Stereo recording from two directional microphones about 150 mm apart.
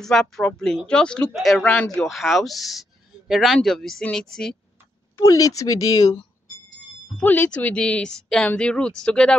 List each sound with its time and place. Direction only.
0.0 s speech: 5° left (ahead or behind)
5.1 s speech: 20° left (ahead or behind)
7.2 s speech: 10° left (ahead or behind)